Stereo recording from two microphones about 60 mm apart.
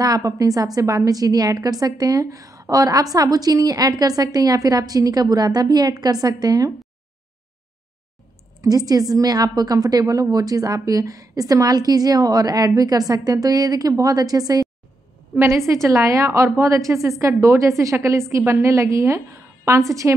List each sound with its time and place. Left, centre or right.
0.0 s a woman's voice: right
8.5 s a woman's voice: right
15.5 s a woman's voice: right